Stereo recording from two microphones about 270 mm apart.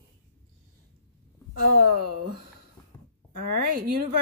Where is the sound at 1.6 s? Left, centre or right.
Right.